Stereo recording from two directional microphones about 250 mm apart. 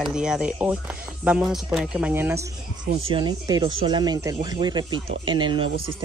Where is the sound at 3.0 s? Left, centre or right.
Right.